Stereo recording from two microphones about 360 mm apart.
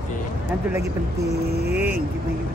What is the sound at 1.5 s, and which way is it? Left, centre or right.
Speech, right.